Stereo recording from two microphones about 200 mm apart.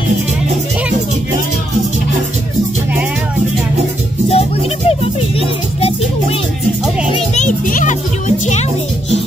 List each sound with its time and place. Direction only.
4.3 s music: 30° left (ahead or behind)
7.1 s music: 35° left (ahead or behind)